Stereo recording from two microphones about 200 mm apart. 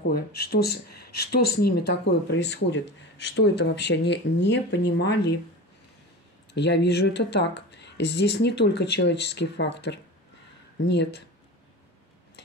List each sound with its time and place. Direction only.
0.0 s speech: 50° left (ahead or behind)
6.5 s speech: 60° left (ahead or behind)